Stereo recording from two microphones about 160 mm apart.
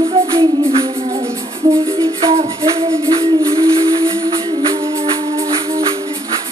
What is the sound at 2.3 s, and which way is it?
Music, 40° right (ahead or behind).